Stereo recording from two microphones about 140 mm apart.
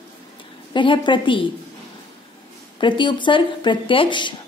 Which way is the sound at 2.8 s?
35° left (ahead or behind).